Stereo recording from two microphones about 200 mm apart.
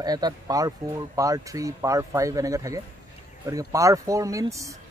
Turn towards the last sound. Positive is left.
turn(degrees=-15)  # may be behind; listen again after turning